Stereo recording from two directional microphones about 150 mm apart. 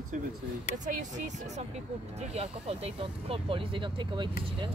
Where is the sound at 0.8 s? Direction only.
55° right (ahead or behind); by 4.3 s 30° right (ahead or behind).